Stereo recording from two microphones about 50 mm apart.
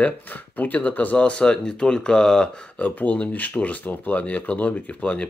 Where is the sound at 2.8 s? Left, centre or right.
Left.